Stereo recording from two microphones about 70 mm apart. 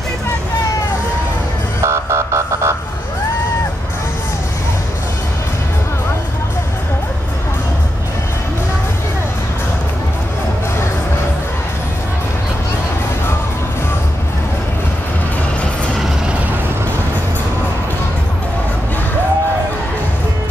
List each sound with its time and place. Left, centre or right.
1.8 s car alarm: right